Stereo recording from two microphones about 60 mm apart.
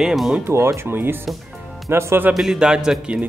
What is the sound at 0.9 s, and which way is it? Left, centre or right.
Speech, right.